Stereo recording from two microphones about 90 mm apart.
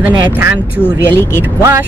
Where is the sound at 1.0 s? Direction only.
25° left (ahead or behind).